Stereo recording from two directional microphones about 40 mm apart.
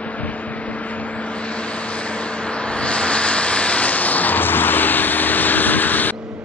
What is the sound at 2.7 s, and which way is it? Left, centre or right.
Vehicle, left.